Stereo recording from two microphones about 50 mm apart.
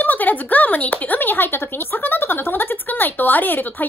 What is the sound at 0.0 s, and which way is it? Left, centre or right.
Speech, left.